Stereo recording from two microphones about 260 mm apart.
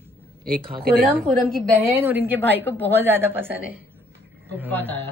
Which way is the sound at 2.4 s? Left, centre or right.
Centre.